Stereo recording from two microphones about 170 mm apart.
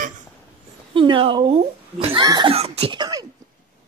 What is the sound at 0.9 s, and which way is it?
Speech, 30° right (ahead or behind).